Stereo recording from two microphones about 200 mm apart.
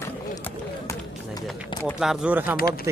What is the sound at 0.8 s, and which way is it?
Run, 20° left (ahead or behind).